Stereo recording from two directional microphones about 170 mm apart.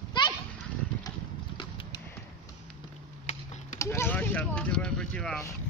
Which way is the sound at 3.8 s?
15° left (ahead or behind).